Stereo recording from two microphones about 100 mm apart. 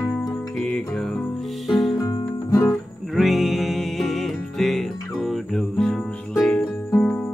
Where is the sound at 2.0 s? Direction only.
35° left (ahead or behind).